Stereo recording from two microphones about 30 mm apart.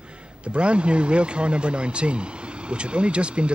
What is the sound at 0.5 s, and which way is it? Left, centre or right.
Vehicle, right.